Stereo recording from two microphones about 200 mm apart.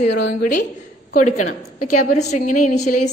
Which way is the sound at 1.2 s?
35° left (ahead or behind).